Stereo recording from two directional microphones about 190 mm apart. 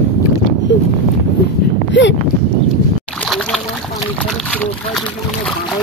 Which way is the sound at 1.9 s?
70° left (ahead or behind).